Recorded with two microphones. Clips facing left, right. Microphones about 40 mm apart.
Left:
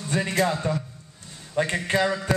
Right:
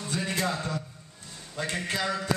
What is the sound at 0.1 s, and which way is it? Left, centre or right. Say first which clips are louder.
A man's voice: left 6 dB; left.